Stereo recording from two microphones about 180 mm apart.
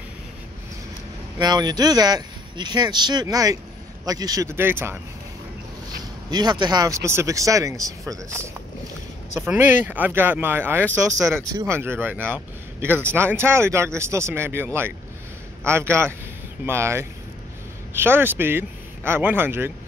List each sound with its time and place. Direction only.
1.4 s speech: 20° right (ahead or behind)
6.3 s speech: 25° right (ahead or behind)